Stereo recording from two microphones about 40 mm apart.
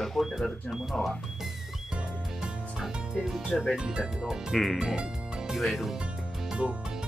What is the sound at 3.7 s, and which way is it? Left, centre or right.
Speech, right.